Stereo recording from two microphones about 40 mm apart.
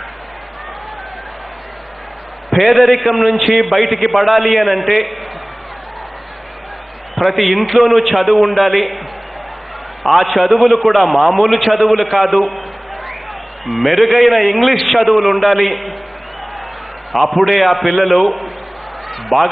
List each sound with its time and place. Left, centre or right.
2.5 s a man's voice: centre
7.2 s a man's voice: centre
10.0 s a man's voice: centre
17.1 s a man's voice: centre
19.0 s a sound: centre